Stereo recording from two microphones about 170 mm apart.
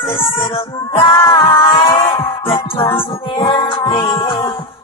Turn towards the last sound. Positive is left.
turn(degrees=30)  # may be behind; listen again after turning